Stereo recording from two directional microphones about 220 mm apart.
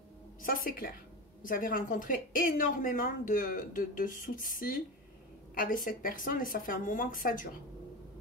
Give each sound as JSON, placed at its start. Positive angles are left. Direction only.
{"t": 0.4, "sound": "a woman's voice", "side_deg": 40}